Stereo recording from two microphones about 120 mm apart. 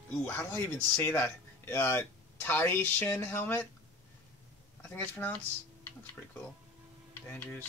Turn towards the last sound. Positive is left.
turn(degrees=15)  # may be behind; listen again after turning